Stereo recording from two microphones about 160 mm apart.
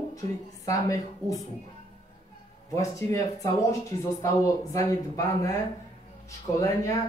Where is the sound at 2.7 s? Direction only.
20° left (ahead or behind).